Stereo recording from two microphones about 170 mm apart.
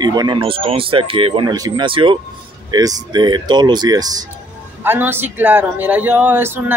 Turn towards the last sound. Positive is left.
turn(degrees=-10)  # may be behind; listen again after turning